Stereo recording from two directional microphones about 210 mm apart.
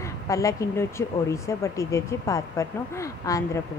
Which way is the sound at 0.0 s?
15° left (ahead or behind).